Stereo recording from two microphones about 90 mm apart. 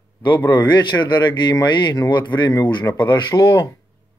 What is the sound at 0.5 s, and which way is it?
Speech, 55° left (ahead or behind).